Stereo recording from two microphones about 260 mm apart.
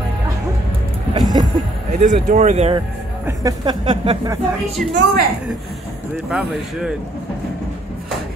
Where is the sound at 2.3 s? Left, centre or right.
Right.